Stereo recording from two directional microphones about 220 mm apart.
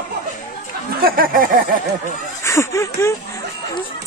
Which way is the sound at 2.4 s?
15° left (ahead or behind).